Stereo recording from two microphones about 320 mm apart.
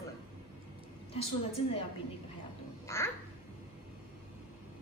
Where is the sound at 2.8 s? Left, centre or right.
Centre.